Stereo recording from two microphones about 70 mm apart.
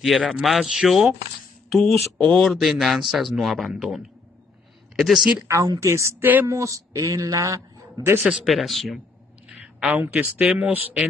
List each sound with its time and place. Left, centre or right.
0.0 s speech: centre
1.8 s speech: centre
5.5 s a man's voice: right
8.5 s speech: centre
9.5 s a sound: centre
9.9 s speech: right